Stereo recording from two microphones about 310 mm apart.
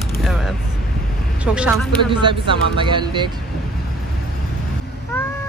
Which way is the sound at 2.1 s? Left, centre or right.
Centre.